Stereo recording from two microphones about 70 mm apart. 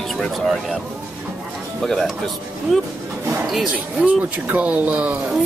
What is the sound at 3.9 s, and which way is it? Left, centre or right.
Speech, right.